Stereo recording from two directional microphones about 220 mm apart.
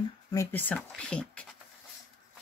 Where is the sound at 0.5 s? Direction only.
5° left (ahead or behind).